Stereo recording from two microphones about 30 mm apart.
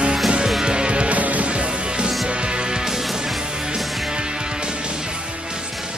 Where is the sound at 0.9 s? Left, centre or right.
Right.